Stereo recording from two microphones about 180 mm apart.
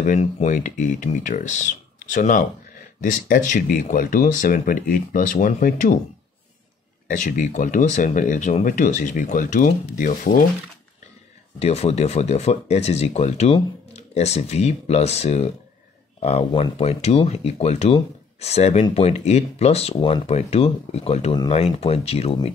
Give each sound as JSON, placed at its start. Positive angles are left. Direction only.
{"t": 0.0, "sound": "speech", "side_deg": 40}
{"t": 7.1, "sound": "speech", "side_deg": 45}
{"t": 11.6, "sound": "speech", "side_deg": 35}